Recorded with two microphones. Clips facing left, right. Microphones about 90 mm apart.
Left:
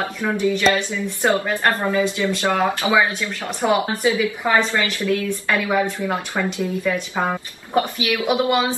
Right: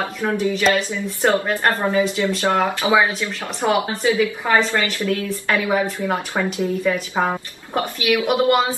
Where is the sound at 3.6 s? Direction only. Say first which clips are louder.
Even; centre (ahead or behind).